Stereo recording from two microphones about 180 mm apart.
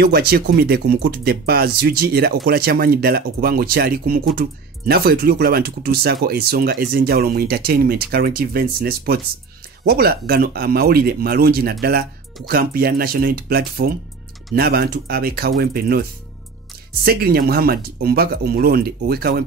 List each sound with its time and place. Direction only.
0.0 s speech: 60° right (ahead or behind)